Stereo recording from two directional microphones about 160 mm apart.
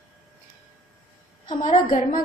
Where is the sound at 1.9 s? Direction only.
60° left (ahead or behind).